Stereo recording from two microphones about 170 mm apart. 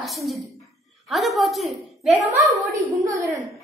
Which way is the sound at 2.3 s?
20° right (ahead or behind).